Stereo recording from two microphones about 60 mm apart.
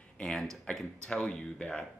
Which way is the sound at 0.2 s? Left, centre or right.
Centre.